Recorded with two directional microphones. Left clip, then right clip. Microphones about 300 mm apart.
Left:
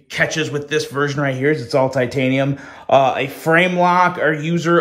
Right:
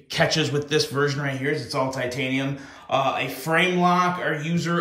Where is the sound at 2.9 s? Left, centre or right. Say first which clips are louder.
Left 8 dB; left.